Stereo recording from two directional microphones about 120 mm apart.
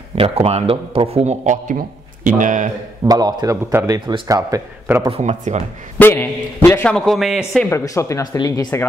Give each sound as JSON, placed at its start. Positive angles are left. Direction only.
{"t": 0.1, "sound": "a man's voice", "side_deg": -55}
{"t": 3.1, "sound": "speech", "side_deg": -35}
{"t": 5.1, "sound": "speech", "side_deg": -65}
{"t": 5.9, "sound": "a man's voice", "side_deg": 15}
{"t": 7.1, "sound": "a man's voice", "side_deg": 0}
{"t": 7.7, "sound": "speech", "side_deg": 25}